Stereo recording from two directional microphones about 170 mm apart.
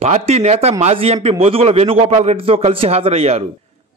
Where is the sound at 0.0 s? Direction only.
40° right (ahead or behind).